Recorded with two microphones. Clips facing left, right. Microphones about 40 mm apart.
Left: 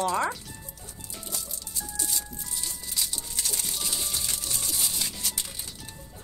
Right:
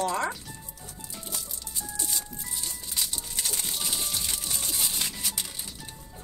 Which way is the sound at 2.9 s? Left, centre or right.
Right.